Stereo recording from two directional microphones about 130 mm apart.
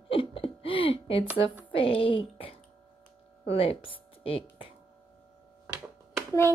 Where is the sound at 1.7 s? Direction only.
45° left (ahead or behind).